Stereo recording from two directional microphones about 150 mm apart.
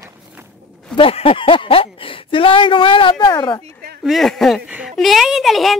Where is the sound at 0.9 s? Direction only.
40° left (ahead or behind).